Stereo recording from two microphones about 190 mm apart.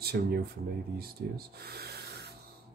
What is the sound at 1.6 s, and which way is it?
Speech, 55° right (ahead or behind).